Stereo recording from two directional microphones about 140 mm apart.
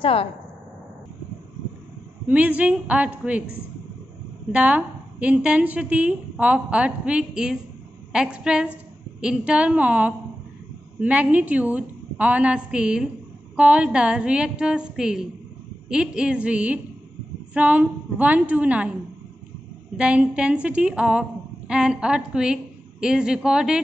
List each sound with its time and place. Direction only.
0.0 s speech: 40° left (ahead or behind)
2.2 s a woman's voice: 10° right (ahead or behind)
4.5 s a woman's voice: 10° right (ahead or behind)
20.0 s a woman's voice: 5° right (ahead or behind)